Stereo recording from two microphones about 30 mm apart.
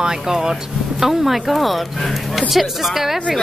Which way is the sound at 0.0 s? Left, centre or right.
Centre.